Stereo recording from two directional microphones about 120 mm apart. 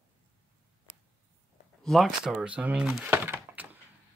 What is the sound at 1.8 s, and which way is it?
Speech, centre (ahead or behind).